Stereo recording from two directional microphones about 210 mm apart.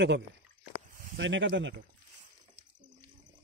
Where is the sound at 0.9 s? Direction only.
45° right (ahead or behind).